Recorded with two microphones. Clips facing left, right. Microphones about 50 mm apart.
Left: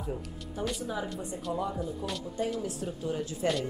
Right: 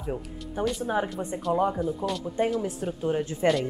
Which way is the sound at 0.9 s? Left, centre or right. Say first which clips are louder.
Right 7 dB; right.